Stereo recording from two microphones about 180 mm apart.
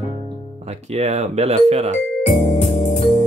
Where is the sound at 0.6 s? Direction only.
35° right (ahead or behind).